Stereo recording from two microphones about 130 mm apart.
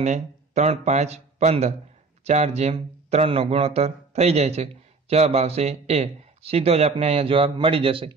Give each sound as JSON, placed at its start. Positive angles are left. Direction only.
{"t": 0.0, "sound": "a man's voice", "side_deg": -60}